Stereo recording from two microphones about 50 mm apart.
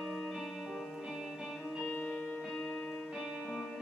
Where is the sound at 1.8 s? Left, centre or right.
Left.